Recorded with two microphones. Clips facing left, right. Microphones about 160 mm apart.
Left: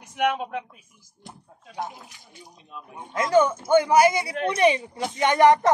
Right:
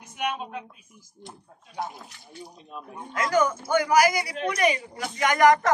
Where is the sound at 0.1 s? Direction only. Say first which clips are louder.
Left 6 dB; 85° left.